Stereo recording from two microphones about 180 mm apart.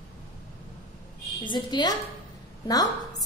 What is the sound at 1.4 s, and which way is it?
A woman's voice, 25° left (ahead or behind).